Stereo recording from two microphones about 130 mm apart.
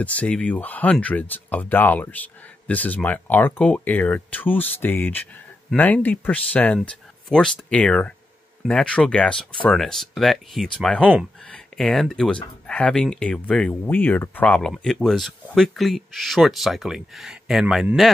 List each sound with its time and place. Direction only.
0.0 s speech: 10° left (ahead or behind)
11.0 s speech: 10° right (ahead or behind)
11.4 s speech: 5° left (ahead or behind)